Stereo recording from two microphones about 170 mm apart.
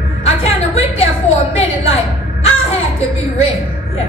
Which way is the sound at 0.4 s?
35° left (ahead or behind).